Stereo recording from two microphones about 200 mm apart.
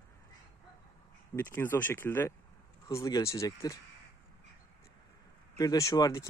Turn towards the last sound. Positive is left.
turn(degrees=15)  # may be behind; listen again after turning